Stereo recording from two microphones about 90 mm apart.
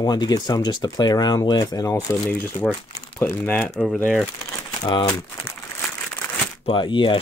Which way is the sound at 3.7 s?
5° left (ahead or behind).